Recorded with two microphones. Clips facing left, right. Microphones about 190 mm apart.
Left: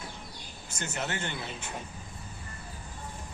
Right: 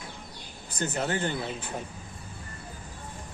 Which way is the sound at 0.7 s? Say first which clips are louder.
Right 6 dB; 35° right (ahead or behind).